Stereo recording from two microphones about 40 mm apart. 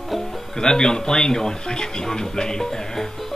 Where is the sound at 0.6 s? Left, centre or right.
Centre.